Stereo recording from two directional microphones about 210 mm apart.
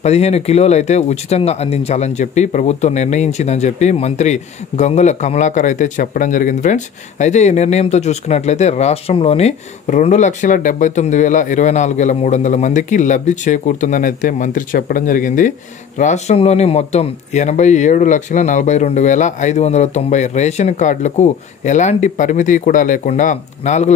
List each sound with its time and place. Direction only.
0.0 s speech: 30° left (ahead or behind)